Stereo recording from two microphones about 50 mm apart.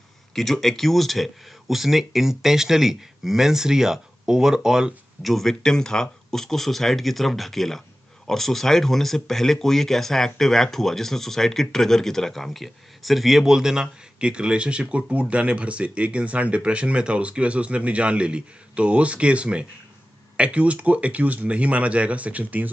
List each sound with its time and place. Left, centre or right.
0.3 s speech: centre
5.2 s speech: centre; by 22.7 s right